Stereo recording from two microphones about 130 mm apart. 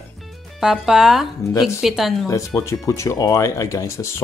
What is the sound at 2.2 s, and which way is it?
Speech, 25° left (ahead or behind).